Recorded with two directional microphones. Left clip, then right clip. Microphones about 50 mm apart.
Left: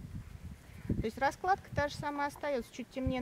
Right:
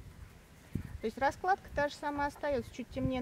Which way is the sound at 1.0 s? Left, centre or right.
Left.